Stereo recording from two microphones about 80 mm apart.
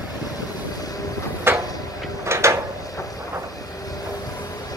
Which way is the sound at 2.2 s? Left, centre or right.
Right.